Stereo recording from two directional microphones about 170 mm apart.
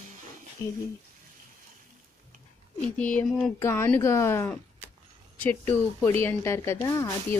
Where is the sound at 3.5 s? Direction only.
15° left (ahead or behind).